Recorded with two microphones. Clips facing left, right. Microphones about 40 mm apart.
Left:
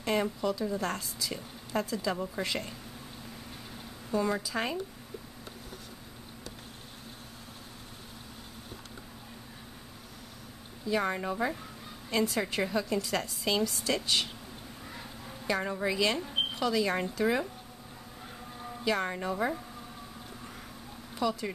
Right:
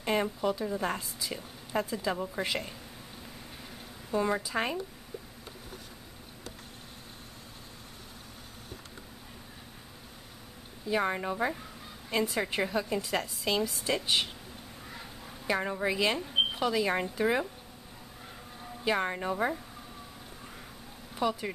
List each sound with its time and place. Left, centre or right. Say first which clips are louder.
0.0 s a woman's voice: even; centre
4.1 s a woman's voice: right 1 dB; centre
10.9 s a woman's voice: even; centre
13.2 s a woman's voice: even; centre
13.7 s a woman's voice: even; centre
14.9 s a sound: left 1 dB; centre
15.4 s a woman's voice: right 1 dB; centre
18.9 s a woman's voice: right 1 dB; centre
21.1 s speech: right 1 dB; right